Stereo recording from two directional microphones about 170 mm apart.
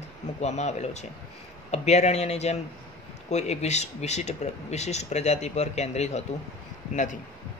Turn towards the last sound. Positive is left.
turn(degrees=45)  # may be behind; listen again after turning